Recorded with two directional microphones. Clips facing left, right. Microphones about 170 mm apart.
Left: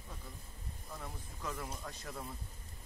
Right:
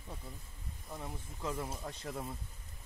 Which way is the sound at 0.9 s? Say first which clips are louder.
Right 3 dB; 25° right (ahead or behind).